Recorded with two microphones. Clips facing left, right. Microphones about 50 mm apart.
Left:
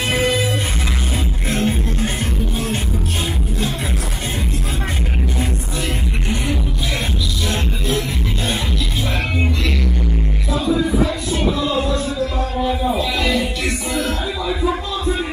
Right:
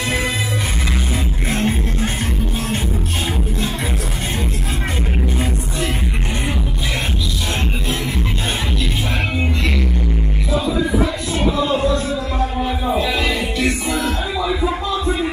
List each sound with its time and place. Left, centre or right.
1.5 s music: right
11.5 s music: right
12.5 s music: right